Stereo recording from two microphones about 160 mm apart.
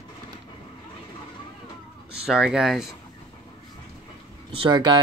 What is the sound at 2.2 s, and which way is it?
Speech, 5° right (ahead or behind).